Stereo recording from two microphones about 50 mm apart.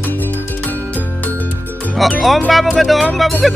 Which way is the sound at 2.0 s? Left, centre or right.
Centre.